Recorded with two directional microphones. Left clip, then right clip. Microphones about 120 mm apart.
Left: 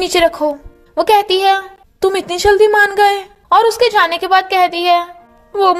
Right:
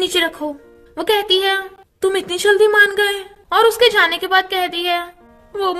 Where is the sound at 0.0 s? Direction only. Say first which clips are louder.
Left 6 dB; 45° left (ahead or behind).